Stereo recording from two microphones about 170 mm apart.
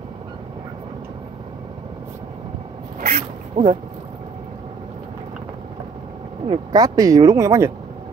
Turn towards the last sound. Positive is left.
turn(degrees=-20)  # may be behind; listen again after turning